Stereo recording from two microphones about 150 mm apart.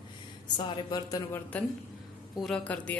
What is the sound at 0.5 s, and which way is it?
Speech, 30° left (ahead or behind).